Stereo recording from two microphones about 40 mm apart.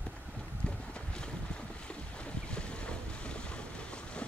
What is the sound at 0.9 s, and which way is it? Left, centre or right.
Boat, left.